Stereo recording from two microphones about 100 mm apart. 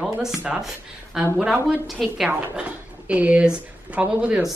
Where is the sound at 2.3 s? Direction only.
15° right (ahead or behind).